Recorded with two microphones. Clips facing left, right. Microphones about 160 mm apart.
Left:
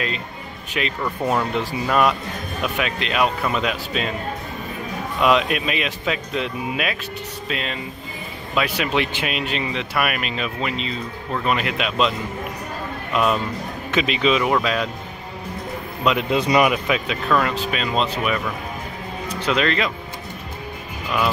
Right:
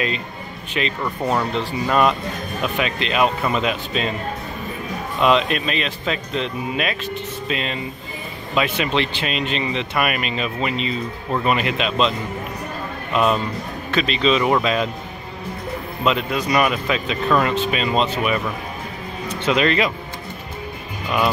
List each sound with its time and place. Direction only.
0.7 s speech: 5° left (ahead or behind)
5.2 s speech: 5° left (ahead or behind)
13.1 s speech: 5° left (ahead or behind)
16.2 s speech: 25° left (ahead or behind)
16.5 s speech: 15° left (ahead or behind)
17.3 s speech: 5° right (ahead or behind)
19.4 s speech: 5° right (ahead or behind)